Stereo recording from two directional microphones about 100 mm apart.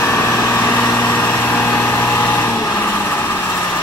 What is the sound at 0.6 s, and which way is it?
Vehicle, 30° left (ahead or behind).